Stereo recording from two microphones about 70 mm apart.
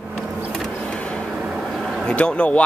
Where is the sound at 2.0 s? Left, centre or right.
Centre.